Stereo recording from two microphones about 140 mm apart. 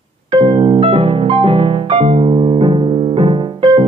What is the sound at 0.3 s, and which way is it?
Piano, 35° right (ahead or behind).